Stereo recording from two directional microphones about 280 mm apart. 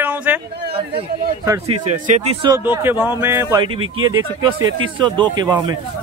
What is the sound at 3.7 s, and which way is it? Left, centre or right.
Speech, right.